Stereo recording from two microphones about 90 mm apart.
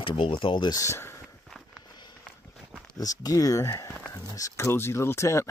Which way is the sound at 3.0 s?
45° left (ahead or behind).